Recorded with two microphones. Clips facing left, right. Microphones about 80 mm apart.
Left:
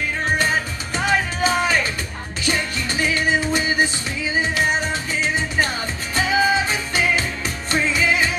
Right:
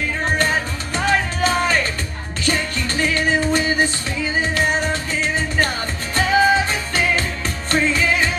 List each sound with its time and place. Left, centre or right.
0.4 s music: centre